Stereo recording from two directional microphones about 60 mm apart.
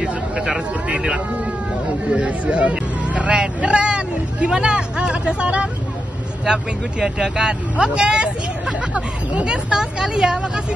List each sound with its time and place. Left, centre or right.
0.0 s speech: centre